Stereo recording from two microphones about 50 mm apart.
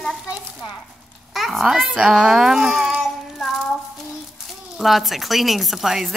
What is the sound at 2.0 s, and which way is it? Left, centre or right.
Speech, centre.